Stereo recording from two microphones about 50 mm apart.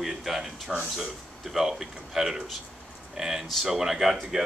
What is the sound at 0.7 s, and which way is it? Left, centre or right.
Speech, centre.